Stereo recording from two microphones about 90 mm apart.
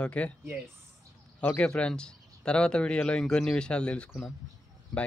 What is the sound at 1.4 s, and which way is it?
Speech, 15° left (ahead or behind).